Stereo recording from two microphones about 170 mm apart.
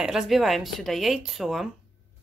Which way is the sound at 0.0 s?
Centre (ahead or behind).